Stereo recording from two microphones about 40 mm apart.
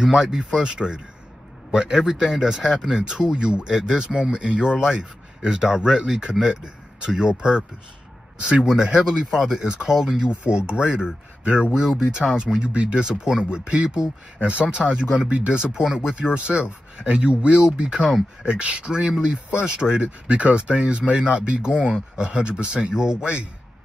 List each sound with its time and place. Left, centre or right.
0.0 s speech: centre
3.0 s speech: right
8.6 s speech: centre
10.4 s speech: right
15.7 s speech: centre
16.1 s speech: right